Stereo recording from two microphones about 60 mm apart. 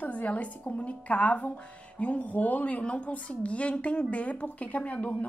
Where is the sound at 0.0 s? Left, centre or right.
Left.